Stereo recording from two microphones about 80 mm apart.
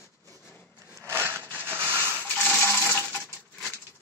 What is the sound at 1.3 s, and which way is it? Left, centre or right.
Water, left.